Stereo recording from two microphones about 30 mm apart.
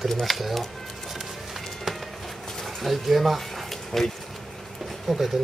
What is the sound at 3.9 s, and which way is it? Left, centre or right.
Speech, centre.